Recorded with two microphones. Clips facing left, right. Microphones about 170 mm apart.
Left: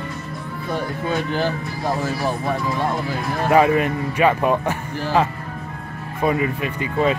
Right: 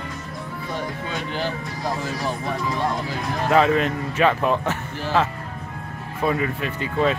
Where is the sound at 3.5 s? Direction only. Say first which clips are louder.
Left 2 dB; 10° left (ahead or behind).